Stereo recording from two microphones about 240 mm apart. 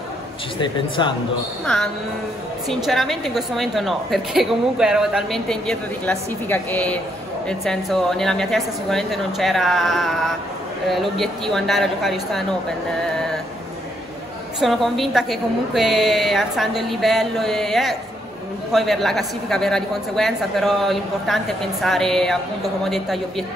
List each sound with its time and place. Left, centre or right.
0.6 s speech: centre
1.7 s a woman's voice: centre
14.6 s a woman's voice: centre